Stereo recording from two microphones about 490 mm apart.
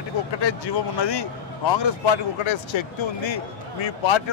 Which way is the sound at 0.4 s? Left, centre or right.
Left.